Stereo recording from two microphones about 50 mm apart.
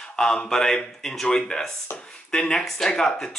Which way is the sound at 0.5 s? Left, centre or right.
Centre.